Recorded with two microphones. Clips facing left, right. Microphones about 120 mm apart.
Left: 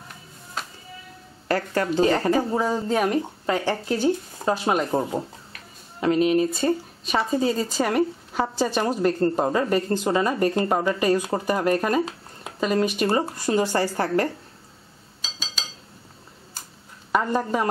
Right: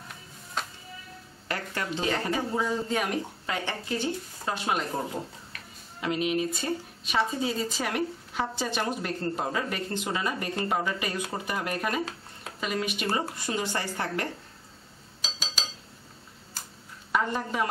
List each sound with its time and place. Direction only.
0.6 s music: centre (ahead or behind)
1.5 s a woman's voice: 40° left (ahead or behind)
15.2 s a sound: 5° right (ahead or behind)
17.1 s a woman's voice: 40° left (ahead or behind)